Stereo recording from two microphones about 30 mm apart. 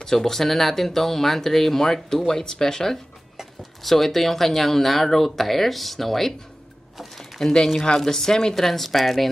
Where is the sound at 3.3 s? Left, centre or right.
Centre.